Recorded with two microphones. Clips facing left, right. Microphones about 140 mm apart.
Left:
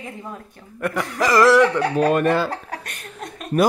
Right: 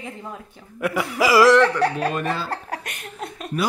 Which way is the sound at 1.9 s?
50° left (ahead or behind).